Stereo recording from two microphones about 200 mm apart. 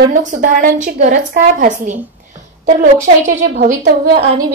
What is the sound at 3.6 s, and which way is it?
Speech, 45° right (ahead or behind).